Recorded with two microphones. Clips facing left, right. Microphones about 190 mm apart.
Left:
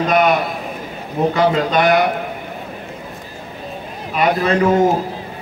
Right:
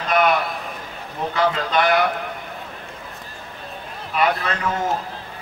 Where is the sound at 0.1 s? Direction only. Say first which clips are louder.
Left 1 dB; 20° left (ahead or behind).